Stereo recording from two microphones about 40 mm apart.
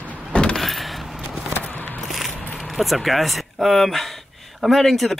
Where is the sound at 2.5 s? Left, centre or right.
Centre.